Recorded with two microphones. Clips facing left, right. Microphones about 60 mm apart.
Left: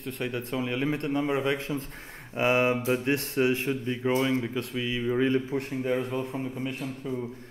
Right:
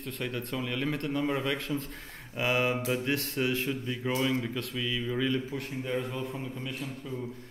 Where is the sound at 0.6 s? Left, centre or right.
Centre; by 6.3 s left.